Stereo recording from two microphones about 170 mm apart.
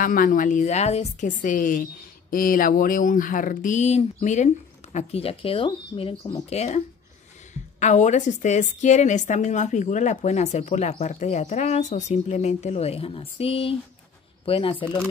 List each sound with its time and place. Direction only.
0.0 s a woman's voice: 55° left (ahead or behind)
7.8 s a woman's voice: 45° left (ahead or behind); by 15.0 s 30° left (ahead or behind)